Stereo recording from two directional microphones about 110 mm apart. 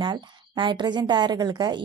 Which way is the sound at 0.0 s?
45° right (ahead or behind).